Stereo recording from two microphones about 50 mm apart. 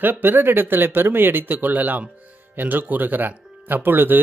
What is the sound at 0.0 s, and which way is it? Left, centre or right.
Speech, right.